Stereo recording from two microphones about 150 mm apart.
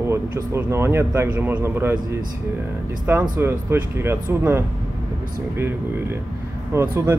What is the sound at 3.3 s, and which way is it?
Speech, 15° right (ahead or behind).